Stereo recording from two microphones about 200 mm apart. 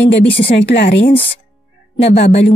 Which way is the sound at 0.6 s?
55° left (ahead or behind).